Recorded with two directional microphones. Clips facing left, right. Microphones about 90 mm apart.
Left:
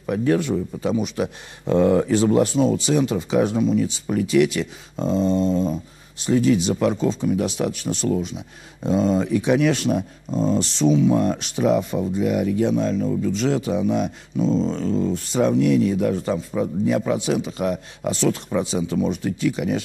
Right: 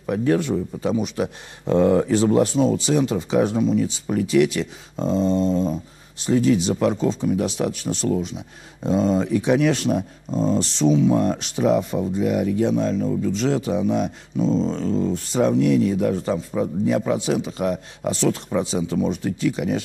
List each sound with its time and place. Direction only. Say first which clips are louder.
0.0 s speech: even; 35° right (ahead or behind)